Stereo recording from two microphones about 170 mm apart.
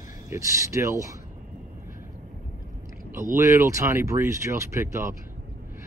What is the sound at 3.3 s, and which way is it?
Speech, 20° right (ahead or behind).